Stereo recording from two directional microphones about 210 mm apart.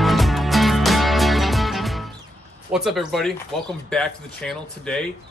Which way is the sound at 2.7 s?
Centre (ahead or behind).